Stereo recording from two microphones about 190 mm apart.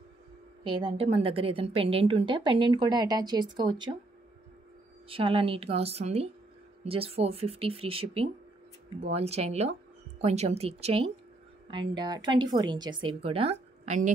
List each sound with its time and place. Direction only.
0.7 s a woman's voice: 25° right (ahead or behind)
5.0 s a woman's voice: 30° right (ahead or behind)